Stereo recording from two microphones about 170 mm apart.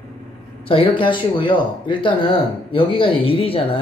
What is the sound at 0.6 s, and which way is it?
Speech, 30° left (ahead or behind).